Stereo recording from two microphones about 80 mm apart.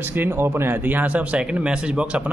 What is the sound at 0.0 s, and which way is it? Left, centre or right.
Speech, right.